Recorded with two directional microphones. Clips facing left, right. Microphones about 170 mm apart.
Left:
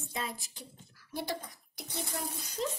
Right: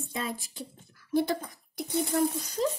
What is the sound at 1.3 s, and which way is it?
Speech, 55° right (ahead or behind).